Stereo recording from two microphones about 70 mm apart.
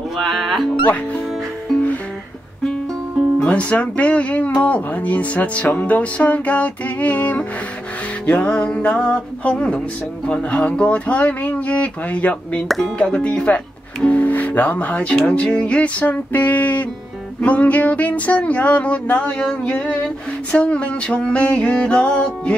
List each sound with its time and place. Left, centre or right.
0.2 s speech: centre
3.4 s speech: centre
8.3 s music: centre
12.6 s speech: centre
13.0 s music: centre
14.0 s speech: left
20.5 s music: centre